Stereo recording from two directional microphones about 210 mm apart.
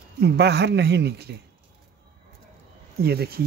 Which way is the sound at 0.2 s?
50° right (ahead or behind).